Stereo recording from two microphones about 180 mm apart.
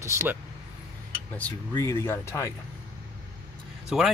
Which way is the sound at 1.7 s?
15° left (ahead or behind).